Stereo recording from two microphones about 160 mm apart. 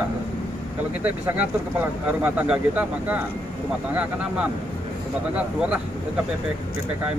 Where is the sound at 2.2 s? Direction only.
10° right (ahead or behind).